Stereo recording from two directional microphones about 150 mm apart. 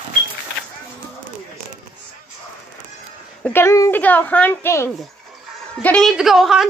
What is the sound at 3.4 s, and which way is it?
A woman's voice, 15° left (ahead or behind).